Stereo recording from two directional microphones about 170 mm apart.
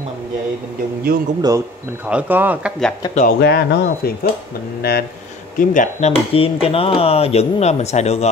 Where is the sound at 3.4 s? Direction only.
75° left (ahead or behind).